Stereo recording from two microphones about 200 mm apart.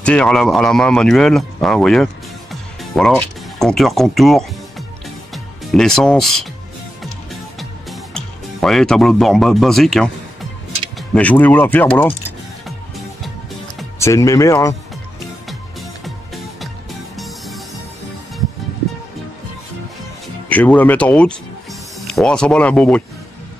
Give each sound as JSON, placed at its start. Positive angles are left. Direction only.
{"t": 0.0, "sound": "speech", "side_deg": 5}
{"t": 7.5, "sound": "music", "side_deg": 0}
{"t": 11.0, "sound": "speech", "side_deg": 5}
{"t": 13.9, "sound": "speech", "side_deg": 15}
{"t": 20.4, "sound": "speech", "side_deg": 5}